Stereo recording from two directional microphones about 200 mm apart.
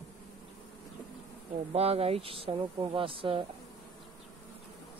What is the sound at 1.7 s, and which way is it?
Speech, 30° right (ahead or behind).